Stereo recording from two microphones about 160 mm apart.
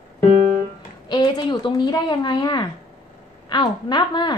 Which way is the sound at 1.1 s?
25° left (ahead or behind).